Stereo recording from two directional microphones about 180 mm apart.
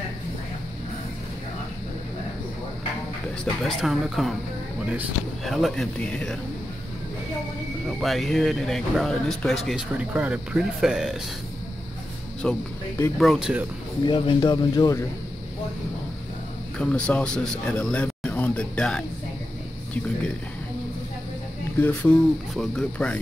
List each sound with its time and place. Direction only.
3.6 s speech: centre (ahead or behind)
8.0 s speech: centre (ahead or behind)
12.4 s speech: 5° left (ahead or behind)
14.0 s speech: 25° left (ahead or behind)
16.7 s a man's voice: 5° left (ahead or behind)
21.7 s speech: 10° left (ahead or behind)